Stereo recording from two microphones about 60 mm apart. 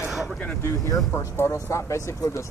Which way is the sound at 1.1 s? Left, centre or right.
Left.